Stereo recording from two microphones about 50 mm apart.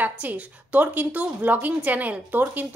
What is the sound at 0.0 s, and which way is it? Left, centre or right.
Speech, right.